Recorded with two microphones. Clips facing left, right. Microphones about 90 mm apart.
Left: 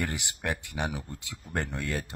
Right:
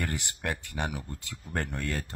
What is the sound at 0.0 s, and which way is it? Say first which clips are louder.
Speech: left 1 dB; 15° left (ahead or behind).